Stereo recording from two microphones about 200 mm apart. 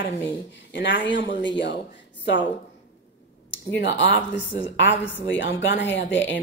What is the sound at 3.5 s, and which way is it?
A woman's voice, 65° left (ahead or behind).